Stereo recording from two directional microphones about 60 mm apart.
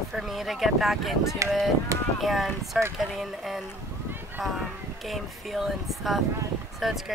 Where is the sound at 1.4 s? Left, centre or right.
Right.